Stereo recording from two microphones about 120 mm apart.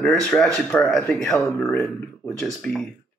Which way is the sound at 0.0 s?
5° left (ahead or behind).